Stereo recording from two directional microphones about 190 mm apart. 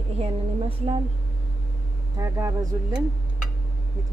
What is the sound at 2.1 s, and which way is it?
Speech, 15° right (ahead or behind).